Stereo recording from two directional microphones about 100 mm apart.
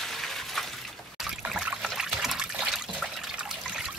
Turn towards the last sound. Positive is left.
turn(degrees=-5)  # may be behind; listen again after turning